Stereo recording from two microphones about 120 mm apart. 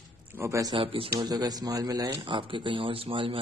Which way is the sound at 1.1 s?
35° right (ahead or behind).